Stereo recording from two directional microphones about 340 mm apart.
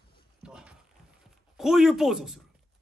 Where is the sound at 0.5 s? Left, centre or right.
Centre.